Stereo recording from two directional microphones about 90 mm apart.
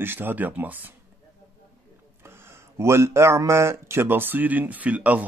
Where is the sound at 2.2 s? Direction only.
25° right (ahead or behind).